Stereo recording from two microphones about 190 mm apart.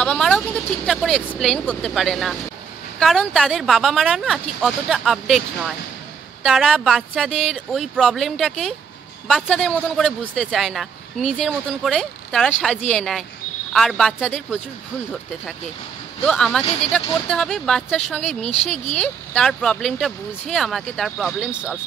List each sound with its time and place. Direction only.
0.0 s a man's voice: 5° left (ahead or behind)
16.3 s a man's voice: 5° left (ahead or behind)
18.4 s speech: 35° left (ahead or behind)
18.9 s a man's voice: 5° left (ahead or behind)